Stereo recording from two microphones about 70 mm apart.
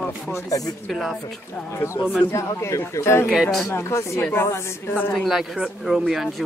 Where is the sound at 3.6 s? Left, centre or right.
Left.